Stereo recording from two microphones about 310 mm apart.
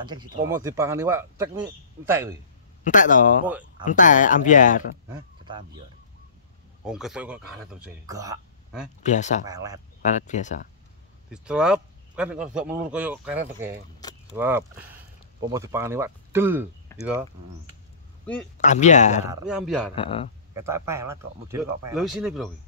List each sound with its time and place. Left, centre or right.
0.0 s speech: centre
2.8 s speech: left
5.1 s speech: centre
6.8 s a man's voice: centre
9.0 s speech: left
9.4 s speech: centre
10.0 s speech: left
11.2 s a man's voice: centre
16.9 s insect: centre
18.6 s speech: left
19.2 s a man's voice: centre
20.0 s speech: centre
20.5 s a man's voice: centre